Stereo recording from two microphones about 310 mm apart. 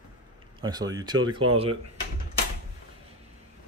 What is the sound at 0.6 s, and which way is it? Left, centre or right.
Speech, centre.